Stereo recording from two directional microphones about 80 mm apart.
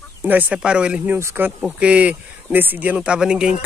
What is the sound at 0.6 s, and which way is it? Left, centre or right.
Speech, centre.